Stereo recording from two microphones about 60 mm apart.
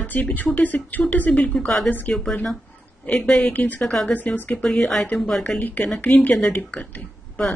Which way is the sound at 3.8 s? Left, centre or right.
Centre.